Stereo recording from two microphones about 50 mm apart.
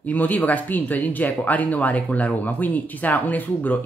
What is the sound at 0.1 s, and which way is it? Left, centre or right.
Speech, left.